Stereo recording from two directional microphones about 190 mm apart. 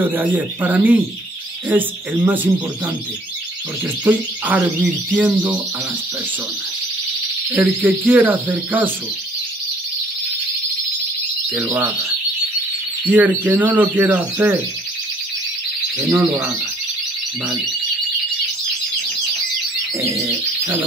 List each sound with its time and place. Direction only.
0.0 s speech: 10° right (ahead or behind)
4.0 s speech: 10° right (ahead or behind)
7.5 s speech: 10° right (ahead or behind)
11.5 s speech: 10° right (ahead or behind)
16.0 s speech: 10° right (ahead or behind)
20.0 s bird: 15° right (ahead or behind)